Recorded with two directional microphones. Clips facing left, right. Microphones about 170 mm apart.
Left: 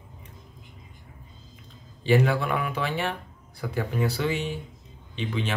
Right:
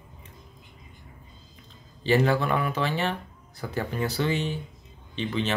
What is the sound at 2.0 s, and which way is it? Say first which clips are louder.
Speech: even; 10° left (ahead or behind).